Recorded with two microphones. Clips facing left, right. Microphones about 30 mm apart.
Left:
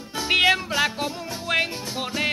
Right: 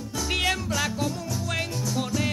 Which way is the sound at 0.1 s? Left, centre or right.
Left.